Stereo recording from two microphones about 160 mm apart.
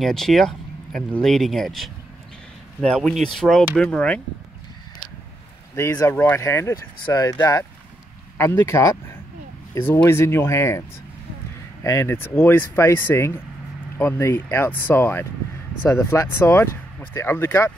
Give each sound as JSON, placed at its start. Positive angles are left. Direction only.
{"t": 0.0, "sound": "speech", "side_deg": 0}
{"t": 5.8, "sound": "speech", "side_deg": 15}
{"t": 11.8, "sound": "speech", "side_deg": 20}